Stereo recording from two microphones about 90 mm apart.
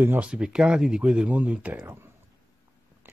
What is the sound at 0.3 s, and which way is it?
Speech, 10° right (ahead or behind).